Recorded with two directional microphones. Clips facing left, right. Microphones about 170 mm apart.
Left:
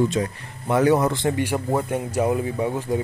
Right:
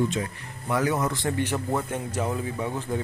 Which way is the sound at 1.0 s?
35° left (ahead or behind).